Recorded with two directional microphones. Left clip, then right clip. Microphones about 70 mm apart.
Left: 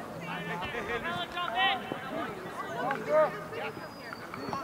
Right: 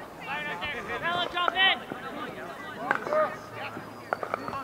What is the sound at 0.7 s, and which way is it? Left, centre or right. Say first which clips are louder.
Speech: even; centre.